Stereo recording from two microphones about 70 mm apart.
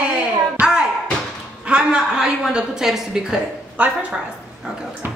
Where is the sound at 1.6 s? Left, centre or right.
Centre.